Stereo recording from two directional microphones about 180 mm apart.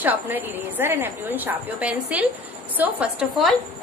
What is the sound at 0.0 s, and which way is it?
A woman's voice, 10° right (ahead or behind).